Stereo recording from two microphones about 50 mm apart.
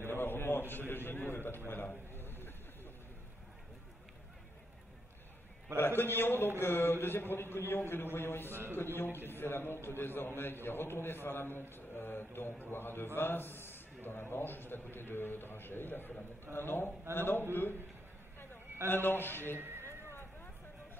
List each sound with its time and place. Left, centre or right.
0.0 s a sound: left
5.8 s a man's voice: left
8.5 s a man's voice: right
8.7 s a man's voice: left
18.9 s a man's voice: left
19.5 s speech: right